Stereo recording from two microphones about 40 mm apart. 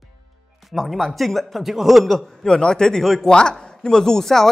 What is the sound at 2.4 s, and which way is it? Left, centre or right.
Speech, centre.